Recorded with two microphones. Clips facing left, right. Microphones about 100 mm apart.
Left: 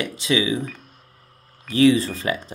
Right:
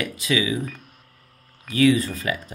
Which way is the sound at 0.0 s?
30° left (ahead or behind).